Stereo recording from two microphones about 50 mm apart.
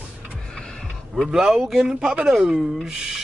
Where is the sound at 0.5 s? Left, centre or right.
Centre.